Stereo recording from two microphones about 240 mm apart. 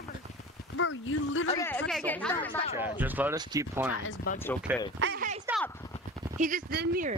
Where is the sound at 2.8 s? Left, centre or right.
Centre.